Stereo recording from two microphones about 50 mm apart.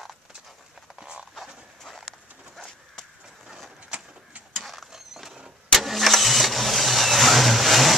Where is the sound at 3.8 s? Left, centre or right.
Right.